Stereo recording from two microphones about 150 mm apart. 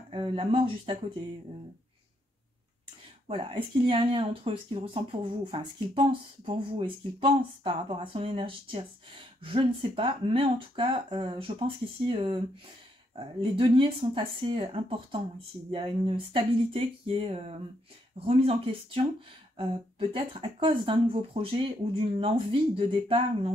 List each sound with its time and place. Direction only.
0.1 s speech: 35° right (ahead or behind)
3.3 s speech: 35° right (ahead or behind)